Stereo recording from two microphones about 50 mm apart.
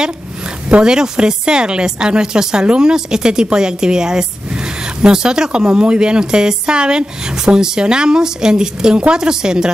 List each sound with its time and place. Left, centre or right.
0.7 s speech: right